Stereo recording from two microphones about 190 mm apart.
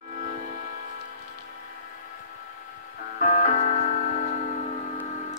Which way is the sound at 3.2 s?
40° left (ahead or behind).